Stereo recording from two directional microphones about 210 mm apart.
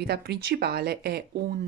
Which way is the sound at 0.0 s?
50° right (ahead or behind).